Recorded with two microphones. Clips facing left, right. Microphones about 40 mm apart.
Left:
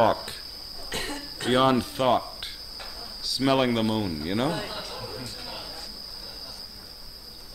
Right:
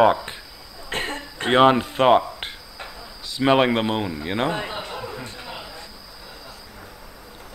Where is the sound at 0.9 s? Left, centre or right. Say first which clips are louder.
Right 5 dB; right.